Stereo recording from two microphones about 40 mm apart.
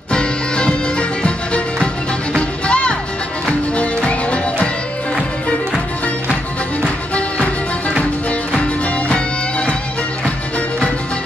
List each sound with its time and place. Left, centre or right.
0.1 s music: left
6.8 s music: left